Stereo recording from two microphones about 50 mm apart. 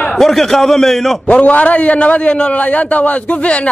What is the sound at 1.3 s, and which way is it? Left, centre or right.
A man's voice, left.